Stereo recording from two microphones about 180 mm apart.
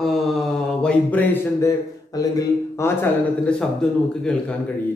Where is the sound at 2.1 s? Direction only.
15° left (ahead or behind).